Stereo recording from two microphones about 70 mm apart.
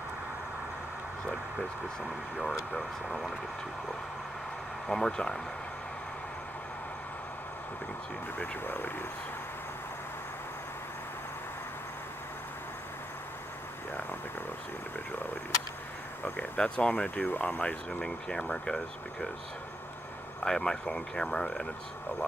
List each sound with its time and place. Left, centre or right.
2.7 s speech: centre
4.8 s speech: centre
8.4 s speech: left
16.3 s speech: centre
20.4 s speech: centre